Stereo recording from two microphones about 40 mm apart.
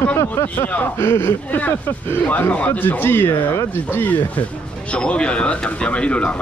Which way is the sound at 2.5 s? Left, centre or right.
Left.